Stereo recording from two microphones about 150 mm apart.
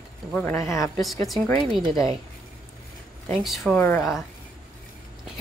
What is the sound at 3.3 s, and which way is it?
Speech, centre (ahead or behind).